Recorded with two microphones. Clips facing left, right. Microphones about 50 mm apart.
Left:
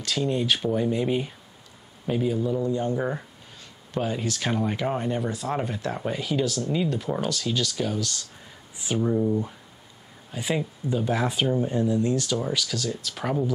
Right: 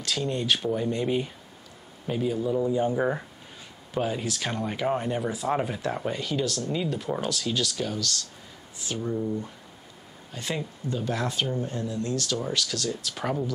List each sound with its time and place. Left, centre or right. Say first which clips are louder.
0.0 s a man's voice: left 3 dB; centre
8.7 s speech: left 6 dB; centre
12.4 s speech: left 1 dB; centre